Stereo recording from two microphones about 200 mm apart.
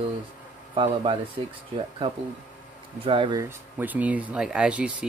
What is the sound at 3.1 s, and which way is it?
Speech, 25° right (ahead or behind).